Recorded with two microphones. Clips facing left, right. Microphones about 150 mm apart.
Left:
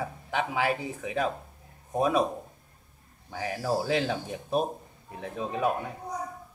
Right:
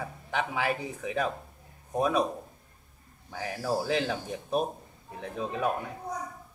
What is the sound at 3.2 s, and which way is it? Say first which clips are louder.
Speech: left 2 dB; 5° left (ahead or behind).